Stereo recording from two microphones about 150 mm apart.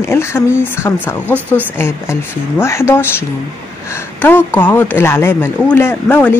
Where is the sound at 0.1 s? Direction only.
15° left (ahead or behind).